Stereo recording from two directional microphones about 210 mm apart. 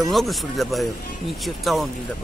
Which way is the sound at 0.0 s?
Centre (ahead or behind).